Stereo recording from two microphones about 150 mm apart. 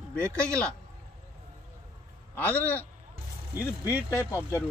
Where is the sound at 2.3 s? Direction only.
10° left (ahead or behind).